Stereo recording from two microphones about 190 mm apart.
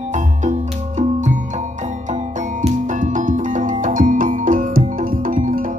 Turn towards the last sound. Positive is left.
turn(degrees=-45)  # may be behind; listen again after turning